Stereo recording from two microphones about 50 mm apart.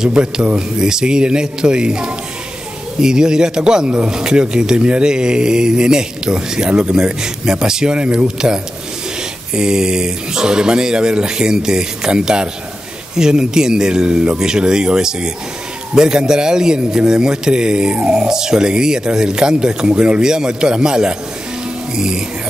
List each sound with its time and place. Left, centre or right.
0.1 s a man's voice: right